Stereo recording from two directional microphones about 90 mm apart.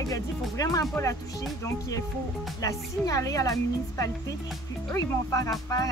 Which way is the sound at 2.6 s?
40° left (ahead or behind).